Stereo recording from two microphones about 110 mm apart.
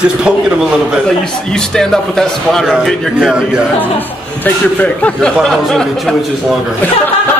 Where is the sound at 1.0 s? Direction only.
5° left (ahead or behind).